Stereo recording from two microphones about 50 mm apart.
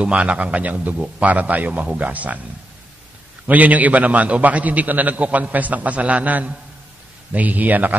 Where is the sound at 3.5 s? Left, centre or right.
Right.